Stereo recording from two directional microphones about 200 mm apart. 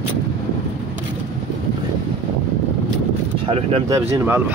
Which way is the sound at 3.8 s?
15° right (ahead or behind).